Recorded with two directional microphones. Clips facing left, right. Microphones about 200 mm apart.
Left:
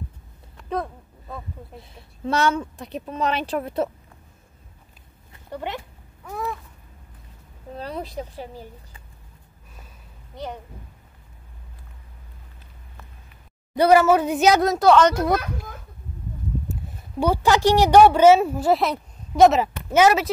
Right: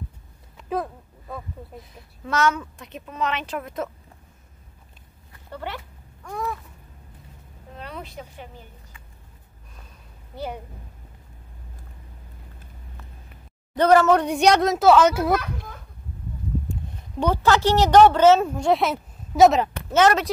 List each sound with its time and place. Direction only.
0.6 s a sound: 5° right (ahead or behind)
1.8 s a woman's voice: 30° left (ahead or behind)
5.3 s a sound: 20° left (ahead or behind)
6.2 s speech: 5° left (ahead or behind)
7.7 s a woman's voice: 35° left (ahead or behind)
10.3 s a woman's voice: 5° right (ahead or behind)
13.7 s speech: 10° left (ahead or behind)
16.8 s a sound: 5° left (ahead or behind)
17.2 s speech: 10° left (ahead or behind)